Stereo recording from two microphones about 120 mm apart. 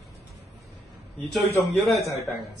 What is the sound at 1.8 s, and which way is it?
Speech, centre (ahead or behind).